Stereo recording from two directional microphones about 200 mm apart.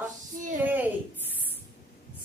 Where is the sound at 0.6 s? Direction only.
10° right (ahead or behind).